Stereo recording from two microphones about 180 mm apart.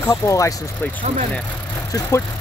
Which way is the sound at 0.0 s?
20° left (ahead or behind).